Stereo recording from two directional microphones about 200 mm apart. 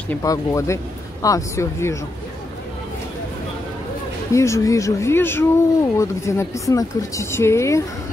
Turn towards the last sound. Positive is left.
turn(degrees=15)  # may be behind; listen again after turning